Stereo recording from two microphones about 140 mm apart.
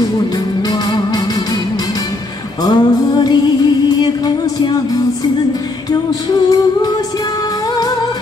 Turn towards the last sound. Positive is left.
turn(degrees=30)  # may be behind; listen again after turning